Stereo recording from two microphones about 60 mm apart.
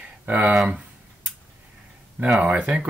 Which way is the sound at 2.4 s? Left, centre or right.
Right.